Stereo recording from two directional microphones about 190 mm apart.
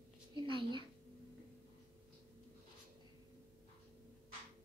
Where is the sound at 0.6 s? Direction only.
25° right (ahead or behind).